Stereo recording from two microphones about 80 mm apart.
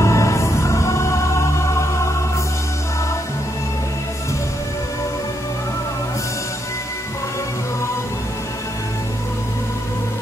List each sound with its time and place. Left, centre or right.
0.0 s music: left